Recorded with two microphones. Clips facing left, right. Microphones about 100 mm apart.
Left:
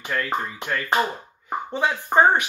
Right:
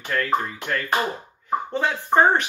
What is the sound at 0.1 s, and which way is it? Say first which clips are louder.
Speech: right 3 dB; 10° left (ahead or behind).